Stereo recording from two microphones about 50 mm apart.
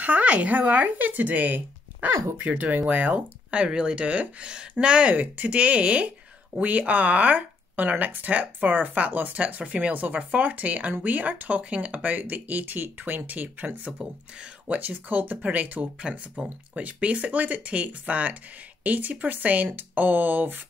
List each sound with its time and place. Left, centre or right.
0.0 s speech: right
5.1 s speech: right
16.0 s speech: right